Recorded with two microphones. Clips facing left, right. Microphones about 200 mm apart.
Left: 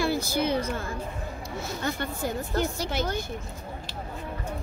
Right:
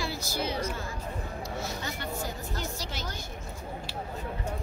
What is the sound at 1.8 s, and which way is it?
Speech, 55° left (ahead or behind).